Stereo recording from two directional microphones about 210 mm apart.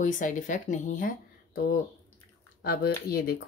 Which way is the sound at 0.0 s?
35° left (ahead or behind).